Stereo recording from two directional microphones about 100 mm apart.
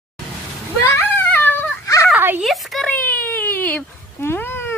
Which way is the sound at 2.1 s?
20° right (ahead or behind).